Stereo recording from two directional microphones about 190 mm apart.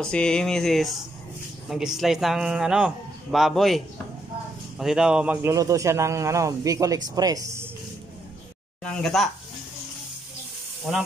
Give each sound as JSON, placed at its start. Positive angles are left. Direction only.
{"t": 0.0, "sound": "a man's voice", "side_deg": 5}
{"t": 8.8, "sound": "a man's voice", "side_deg": 5}
{"t": 10.9, "sound": "a man's voice", "side_deg": 0}